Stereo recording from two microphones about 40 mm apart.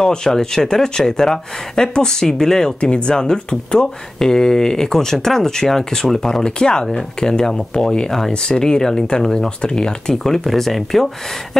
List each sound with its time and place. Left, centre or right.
0.0 s speech: centre
3.1 s speech: left
6.4 s speech: centre
10.1 s speech: centre